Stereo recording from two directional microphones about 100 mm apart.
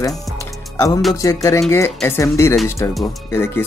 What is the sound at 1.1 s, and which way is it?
Speech, 35° left (ahead or behind).